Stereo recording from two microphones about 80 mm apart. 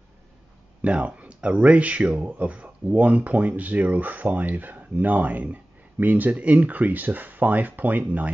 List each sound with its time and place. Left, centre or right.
0.8 s speech: centre